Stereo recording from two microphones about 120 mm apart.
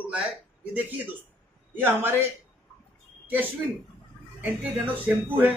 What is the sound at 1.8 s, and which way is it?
Speech, 20° right (ahead or behind).